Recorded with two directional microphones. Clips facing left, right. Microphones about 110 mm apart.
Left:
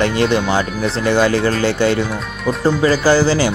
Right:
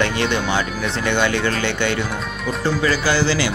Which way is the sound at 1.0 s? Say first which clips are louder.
Left 5 dB; 35° left (ahead or behind).